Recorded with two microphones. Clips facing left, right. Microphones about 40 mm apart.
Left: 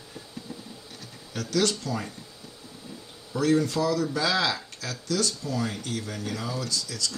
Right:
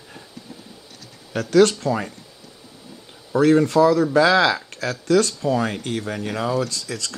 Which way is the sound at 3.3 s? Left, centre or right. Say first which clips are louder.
Right 8 dB; right.